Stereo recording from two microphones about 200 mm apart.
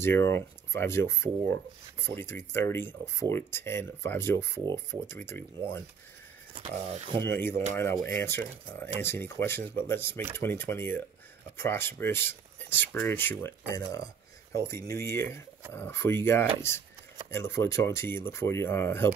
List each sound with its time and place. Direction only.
0.0 s speech: 10° left (ahead or behind)
6.5 s speech: 30° right (ahead or behind)
7.2 s speech: 10° left (ahead or behind)